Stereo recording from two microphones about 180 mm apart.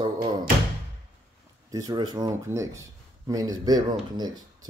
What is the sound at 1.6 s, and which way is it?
Speech, 20° right (ahead or behind).